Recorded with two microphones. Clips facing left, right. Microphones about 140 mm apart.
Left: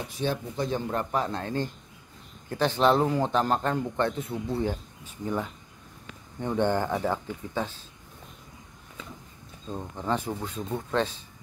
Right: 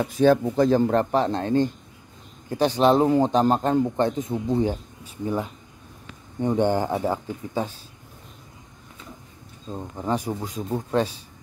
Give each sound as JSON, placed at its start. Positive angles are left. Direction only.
{"t": 0.5, "sound": "a man's voice", "side_deg": -40}
{"t": 9.7, "sound": "speech", "side_deg": -10}